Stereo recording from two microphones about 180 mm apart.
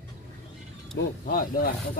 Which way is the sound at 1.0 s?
75° left (ahead or behind).